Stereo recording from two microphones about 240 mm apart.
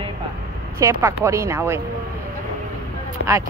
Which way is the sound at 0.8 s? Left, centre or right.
Centre.